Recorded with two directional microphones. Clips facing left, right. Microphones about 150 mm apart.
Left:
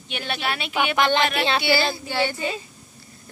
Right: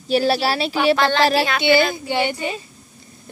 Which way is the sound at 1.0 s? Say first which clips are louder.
Right 2 dB; 20° left (ahead or behind).